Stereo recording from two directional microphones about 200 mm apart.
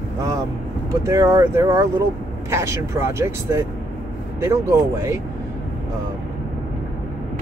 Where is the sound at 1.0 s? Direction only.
15° right (ahead or behind).